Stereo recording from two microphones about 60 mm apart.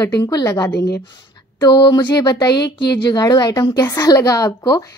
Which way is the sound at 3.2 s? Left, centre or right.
Left.